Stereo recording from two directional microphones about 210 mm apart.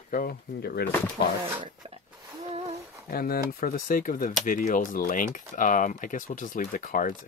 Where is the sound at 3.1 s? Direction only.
45° left (ahead or behind).